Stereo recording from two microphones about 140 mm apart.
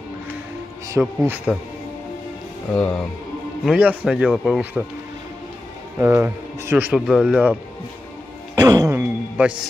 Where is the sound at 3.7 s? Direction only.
10° right (ahead or behind).